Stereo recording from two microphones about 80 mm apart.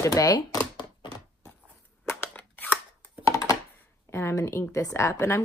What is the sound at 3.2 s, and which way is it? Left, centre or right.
Computer keyboard, left.